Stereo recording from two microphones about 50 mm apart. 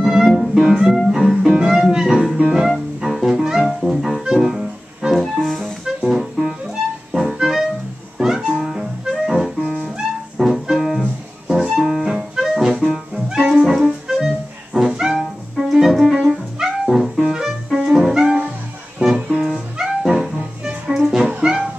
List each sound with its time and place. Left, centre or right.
0.0 s music: centre
5.2 s music: centre
5.6 s music: centre